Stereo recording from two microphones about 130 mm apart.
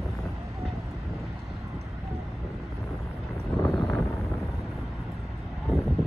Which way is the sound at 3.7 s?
25° left (ahead or behind).